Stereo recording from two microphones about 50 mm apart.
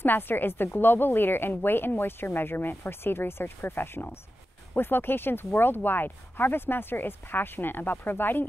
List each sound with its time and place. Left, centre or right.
0.0 s speech: left